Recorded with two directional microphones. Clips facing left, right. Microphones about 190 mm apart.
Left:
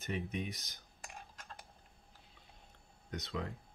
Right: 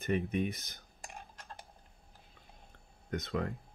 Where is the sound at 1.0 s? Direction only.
35° right (ahead or behind).